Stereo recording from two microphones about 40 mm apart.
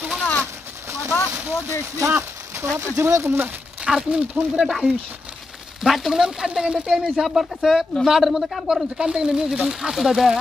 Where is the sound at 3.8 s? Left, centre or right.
Right.